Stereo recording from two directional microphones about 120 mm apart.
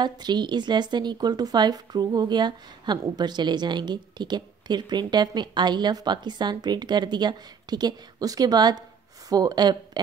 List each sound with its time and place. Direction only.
0.0 s a woman's voice: 35° right (ahead or behind)